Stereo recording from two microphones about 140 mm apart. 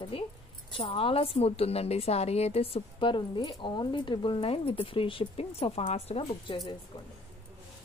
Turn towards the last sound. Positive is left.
turn(degrees=35)  # may be behind; listen again after turning